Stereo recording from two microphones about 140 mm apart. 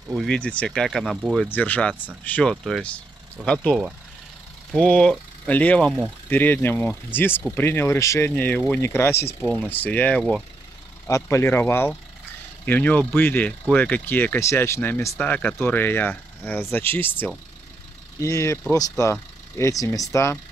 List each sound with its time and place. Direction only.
0.1 s speech: centre (ahead or behind)
0.4 s speech: 10° left (ahead or behind)
1.5 s speech: 10° left (ahead or behind)
2.5 s speech: centre (ahead or behind)
11.1 s speech: 20° left (ahead or behind)